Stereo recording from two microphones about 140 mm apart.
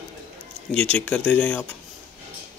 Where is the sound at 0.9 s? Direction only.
10° left (ahead or behind).